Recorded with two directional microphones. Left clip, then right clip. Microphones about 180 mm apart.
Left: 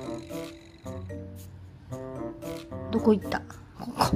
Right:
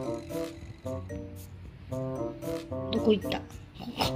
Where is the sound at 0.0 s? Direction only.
10° left (ahead or behind).